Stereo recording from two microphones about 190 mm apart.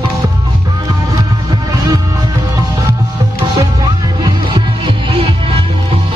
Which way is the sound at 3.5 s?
20° right (ahead or behind).